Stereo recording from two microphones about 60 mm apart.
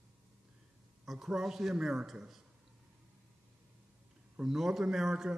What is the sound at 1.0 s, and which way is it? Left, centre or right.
A man's voice, centre.